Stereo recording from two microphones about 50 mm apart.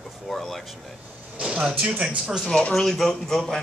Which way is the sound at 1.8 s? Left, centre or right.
Right.